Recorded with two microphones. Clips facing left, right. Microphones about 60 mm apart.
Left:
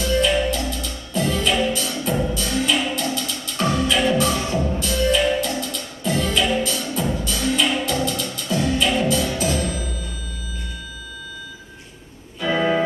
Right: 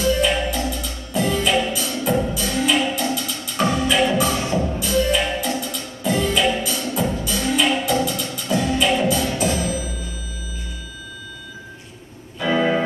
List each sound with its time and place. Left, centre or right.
0.0 s music: centre
4.3 s music: right
4.7 s music: centre
9.4 s music: right
12.4 s organ: centre